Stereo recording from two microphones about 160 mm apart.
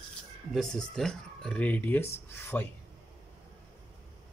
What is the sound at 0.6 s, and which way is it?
Speech, 5° left (ahead or behind).